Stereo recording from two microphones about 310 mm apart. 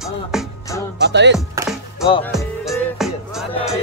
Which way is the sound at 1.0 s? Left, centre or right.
Right.